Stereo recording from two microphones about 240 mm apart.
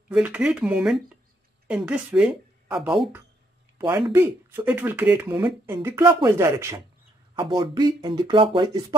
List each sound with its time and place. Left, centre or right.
0.1 s speech: centre